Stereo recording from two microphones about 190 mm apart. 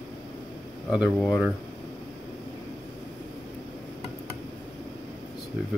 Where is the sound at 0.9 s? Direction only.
5° right (ahead or behind).